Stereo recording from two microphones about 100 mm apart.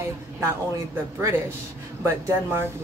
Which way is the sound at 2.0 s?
25° right (ahead or behind).